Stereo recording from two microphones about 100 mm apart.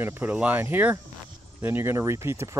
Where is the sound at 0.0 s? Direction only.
15° right (ahead or behind).